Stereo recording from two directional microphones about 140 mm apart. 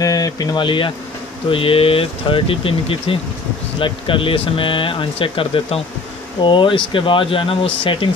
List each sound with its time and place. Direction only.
0.0 s speech: 25° left (ahead or behind)